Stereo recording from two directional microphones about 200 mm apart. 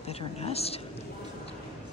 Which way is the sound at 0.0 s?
30° left (ahead or behind).